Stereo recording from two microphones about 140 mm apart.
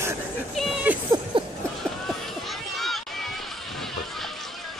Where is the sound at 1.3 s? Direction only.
40° right (ahead or behind).